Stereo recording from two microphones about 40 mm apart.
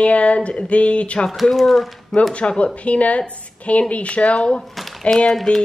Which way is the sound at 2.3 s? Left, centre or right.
Left.